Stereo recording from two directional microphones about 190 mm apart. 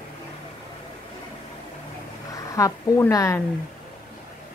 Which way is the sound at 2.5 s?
15° left (ahead or behind).